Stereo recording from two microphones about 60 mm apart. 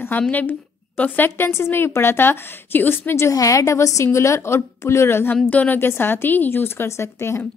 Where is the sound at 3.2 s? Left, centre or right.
Left.